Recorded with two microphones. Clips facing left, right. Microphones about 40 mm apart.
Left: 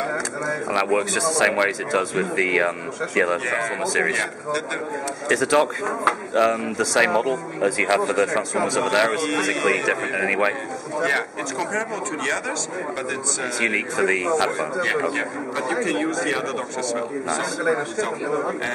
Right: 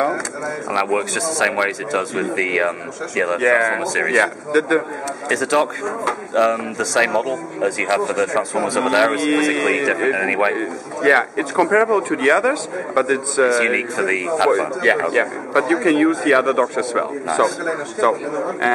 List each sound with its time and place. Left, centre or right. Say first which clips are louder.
0.1 s speech: right 1 dB; centre
3.3 s a man's voice: right 8 dB; centre
3.8 s a man's voice: right 5 dB; centre
5.3 s speech: right 1 dB; centre
11.0 s a man's voice: right 7 dB; centre
13.5 s a man's voice: right 5 dB; centre